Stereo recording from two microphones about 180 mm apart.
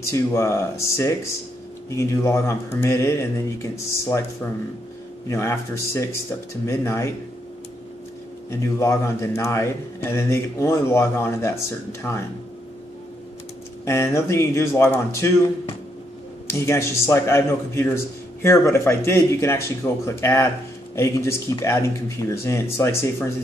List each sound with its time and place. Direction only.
0.0 s a man's voice: 15° left (ahead or behind)
5.3 s a man's voice: 15° left (ahead or behind)
8.5 s a man's voice: 15° left (ahead or behind)
13.8 s a man's voice: 15° left (ahead or behind)